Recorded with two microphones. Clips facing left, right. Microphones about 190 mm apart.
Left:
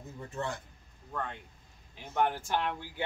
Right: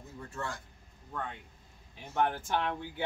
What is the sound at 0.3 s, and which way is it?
Speech, 20° left (ahead or behind).